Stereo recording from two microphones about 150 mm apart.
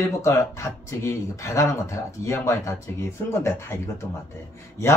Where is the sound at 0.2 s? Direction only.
20° left (ahead or behind).